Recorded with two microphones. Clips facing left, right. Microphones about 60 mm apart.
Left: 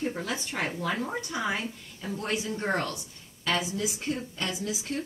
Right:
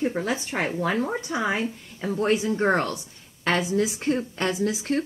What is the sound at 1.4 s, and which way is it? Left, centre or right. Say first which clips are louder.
Speech: right 5 dB; right.